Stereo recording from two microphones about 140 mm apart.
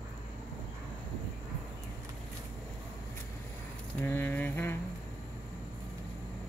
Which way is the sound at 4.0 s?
15° left (ahead or behind).